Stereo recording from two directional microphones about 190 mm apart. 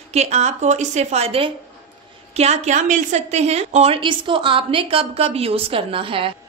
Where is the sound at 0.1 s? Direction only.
35° right (ahead or behind).